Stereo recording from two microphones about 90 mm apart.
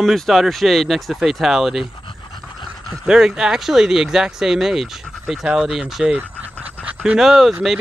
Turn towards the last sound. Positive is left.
turn(degrees=-5)  # may be behind; listen again after turning